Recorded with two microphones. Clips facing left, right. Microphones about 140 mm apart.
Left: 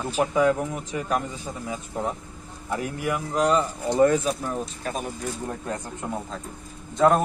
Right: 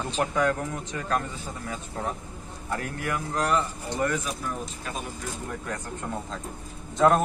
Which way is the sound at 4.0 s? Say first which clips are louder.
Left 9 dB; 25° left (ahead or behind).